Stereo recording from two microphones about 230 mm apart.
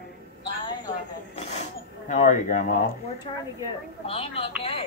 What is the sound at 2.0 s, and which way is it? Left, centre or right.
Speech, left.